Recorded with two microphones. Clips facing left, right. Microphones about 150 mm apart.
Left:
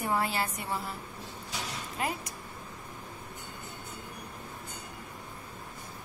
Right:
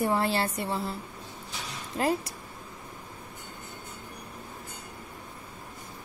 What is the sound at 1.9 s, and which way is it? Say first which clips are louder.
Speech: right 8 dB; 35° right (ahead or behind).